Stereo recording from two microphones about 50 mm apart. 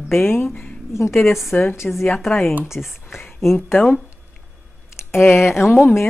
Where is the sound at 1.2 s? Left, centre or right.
Centre.